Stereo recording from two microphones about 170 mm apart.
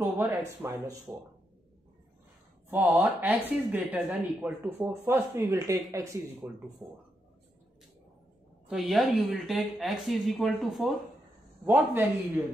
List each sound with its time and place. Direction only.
0.0 s speech: 10° right (ahead or behind)
2.7 s speech: 10° right (ahead or behind)
8.6 s speech: centre (ahead or behind)
11.6 s speech: 10° right (ahead or behind)